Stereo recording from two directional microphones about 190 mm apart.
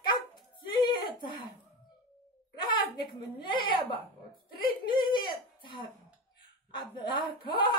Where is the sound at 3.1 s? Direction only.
25° left (ahead or behind).